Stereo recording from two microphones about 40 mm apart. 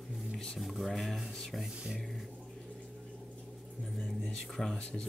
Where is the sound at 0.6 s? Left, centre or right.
Centre.